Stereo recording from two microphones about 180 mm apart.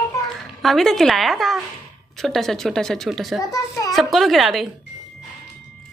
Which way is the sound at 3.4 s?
20° left (ahead or behind).